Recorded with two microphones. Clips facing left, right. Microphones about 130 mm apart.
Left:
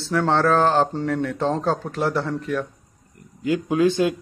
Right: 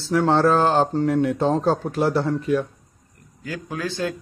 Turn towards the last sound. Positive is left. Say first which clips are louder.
# left 8 dB
turn(degrees=20)  # may be behind; listen again after turning